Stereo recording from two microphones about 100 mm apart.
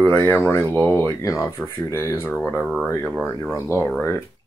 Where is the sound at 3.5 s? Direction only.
25° left (ahead or behind).